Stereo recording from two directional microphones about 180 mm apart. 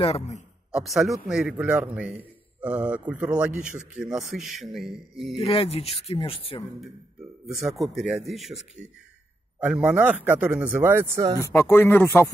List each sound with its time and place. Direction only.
0.0 s speech: 35° left (ahead or behind)
0.7 s speech: 5° right (ahead or behind)
5.4 s speech: 30° left (ahead or behind)
7.7 s speech: centre (ahead or behind); by 11.4 s 15° right (ahead or behind)
11.4 s speech: 15° left (ahead or behind)